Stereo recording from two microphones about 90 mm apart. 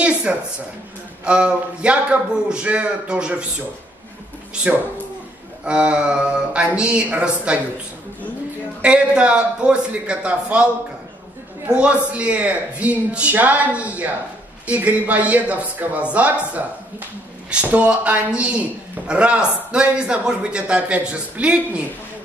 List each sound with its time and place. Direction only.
0.0 s a sound: 10° right (ahead or behind)
1.2 s a man's voice: 10° right (ahead or behind)
5.7 s a man's voice: 10° right (ahead or behind)
8.8 s a man's voice: 10° right (ahead or behind)
11.7 s a man's voice: 15° right (ahead or behind)